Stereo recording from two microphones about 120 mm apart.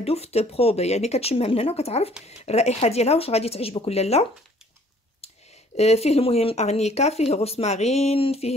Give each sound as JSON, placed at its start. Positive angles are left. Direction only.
{"t": 0.0, "sound": "speech", "side_deg": 60}
{"t": 5.8, "sound": "speech", "side_deg": 60}